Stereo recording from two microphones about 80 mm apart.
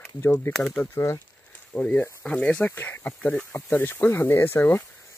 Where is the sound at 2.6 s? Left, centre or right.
Left.